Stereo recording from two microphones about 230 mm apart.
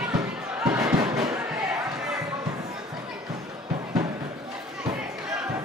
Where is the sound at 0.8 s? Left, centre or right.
Centre.